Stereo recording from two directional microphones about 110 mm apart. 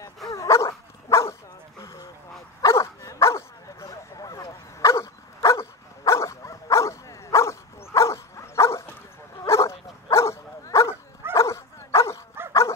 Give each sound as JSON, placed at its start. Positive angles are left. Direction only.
{"t": 0.3, "sound": "dog", "side_deg": 25}
{"t": 1.8, "sound": "a sound", "side_deg": 30}
{"t": 2.6, "sound": "dog", "side_deg": 30}